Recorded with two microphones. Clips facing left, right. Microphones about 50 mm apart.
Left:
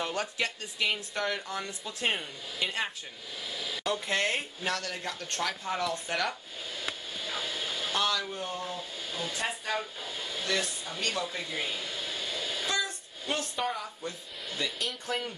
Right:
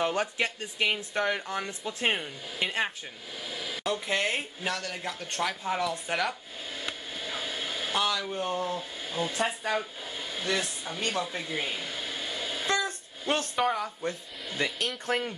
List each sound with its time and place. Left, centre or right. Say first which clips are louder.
0.0 s speech: right 4 dB; right
3.5 s a sound: right 1 dB; right
3.8 s speech: right 1 dB; centre
7.2 s vehicle: even; right
7.9 s a man's voice: right 1 dB; centre
8.3 s speech: right 5 dB; right
10.0 s a sound: right 2 dB; right
13.6 s speech: right 7 dB; centre
14.0 s speech: right 4 dB; right